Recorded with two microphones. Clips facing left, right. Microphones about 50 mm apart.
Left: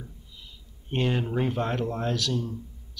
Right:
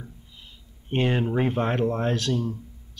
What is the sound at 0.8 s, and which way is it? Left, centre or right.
Speech, right.